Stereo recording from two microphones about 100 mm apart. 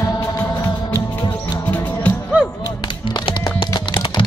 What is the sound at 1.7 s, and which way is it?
Music, 25° left (ahead or behind).